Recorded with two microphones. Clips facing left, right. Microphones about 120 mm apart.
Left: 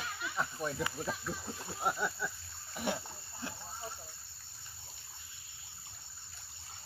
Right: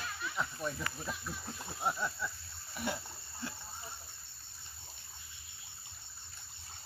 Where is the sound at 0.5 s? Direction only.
20° left (ahead or behind).